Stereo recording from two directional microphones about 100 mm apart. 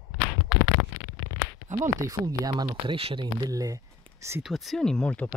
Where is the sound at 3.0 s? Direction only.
75° right (ahead or behind).